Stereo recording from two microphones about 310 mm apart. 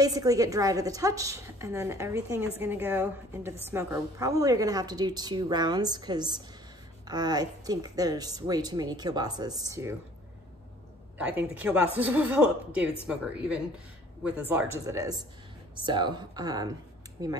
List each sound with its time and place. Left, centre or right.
0.0 s a woman's voice: centre
11.1 s a woman's voice: centre